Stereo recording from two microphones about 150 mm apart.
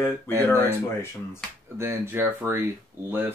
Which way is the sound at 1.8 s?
15° right (ahead or behind).